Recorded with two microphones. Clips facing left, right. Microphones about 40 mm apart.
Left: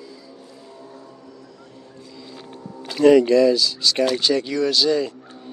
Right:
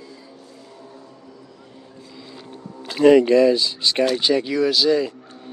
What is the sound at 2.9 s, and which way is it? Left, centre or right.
Speech, right.